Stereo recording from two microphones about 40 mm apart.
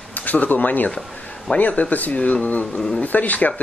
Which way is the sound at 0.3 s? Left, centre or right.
Left.